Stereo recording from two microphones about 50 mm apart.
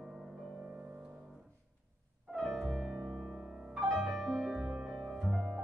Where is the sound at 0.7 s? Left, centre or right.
Right.